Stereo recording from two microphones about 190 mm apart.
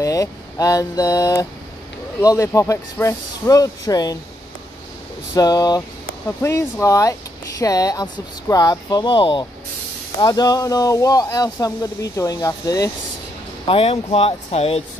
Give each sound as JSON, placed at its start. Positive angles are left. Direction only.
{"t": 0.0, "sound": "speech", "side_deg": 15}
{"t": 5.3, "sound": "speech", "side_deg": 20}
{"t": 13.7, "sound": "speech", "side_deg": 30}